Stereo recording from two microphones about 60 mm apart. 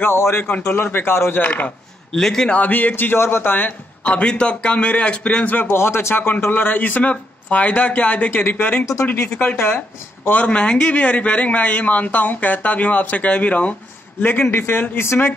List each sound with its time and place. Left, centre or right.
0.0 s speech: left
1.4 s speech: left
2.1 s a man's voice: centre
2.5 s speech: left
8.3 s speech: left
14.2 s speech: left